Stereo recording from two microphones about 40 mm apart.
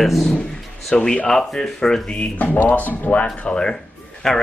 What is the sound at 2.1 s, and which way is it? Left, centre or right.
Speech, left.